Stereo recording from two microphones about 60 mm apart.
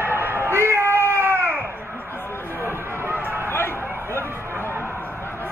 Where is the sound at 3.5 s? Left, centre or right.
Left.